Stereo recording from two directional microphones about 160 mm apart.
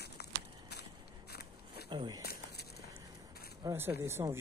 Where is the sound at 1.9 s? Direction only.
25° right (ahead or behind).